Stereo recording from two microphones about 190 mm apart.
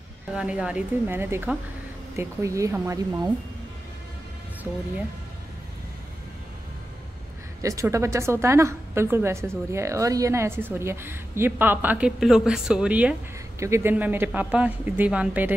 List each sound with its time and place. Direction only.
0.4 s a woman's voice: 5° right (ahead or behind)
7.6 s a woman's voice: 15° right (ahead or behind)